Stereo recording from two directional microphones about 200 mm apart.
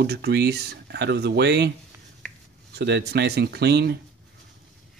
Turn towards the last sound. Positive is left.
turn(degrees=-55)  # may be behind; listen again after turning